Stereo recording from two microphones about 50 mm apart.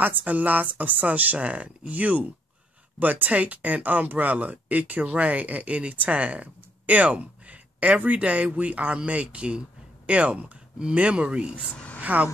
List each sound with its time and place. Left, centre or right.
0.0 s speech: right
11.7 s a sound: left
12.0 s speech: right